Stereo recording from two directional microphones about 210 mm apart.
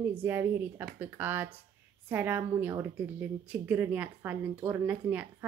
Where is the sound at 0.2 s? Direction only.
10° right (ahead or behind).